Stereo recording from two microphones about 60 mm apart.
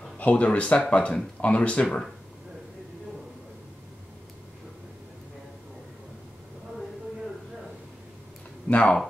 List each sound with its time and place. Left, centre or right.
0.2 s speech: left
8.6 s speech: centre